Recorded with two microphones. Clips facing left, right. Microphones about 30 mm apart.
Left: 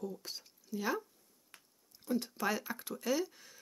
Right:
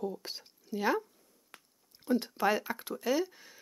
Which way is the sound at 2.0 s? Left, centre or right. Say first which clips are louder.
Right 6 dB; right.